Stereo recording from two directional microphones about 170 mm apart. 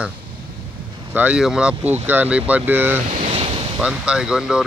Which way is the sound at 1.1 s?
10° right (ahead or behind).